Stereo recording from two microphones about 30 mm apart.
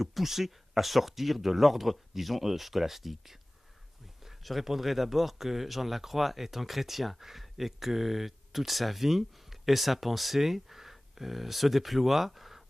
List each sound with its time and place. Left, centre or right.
0.0 s speech: centre
4.4 s speech: centre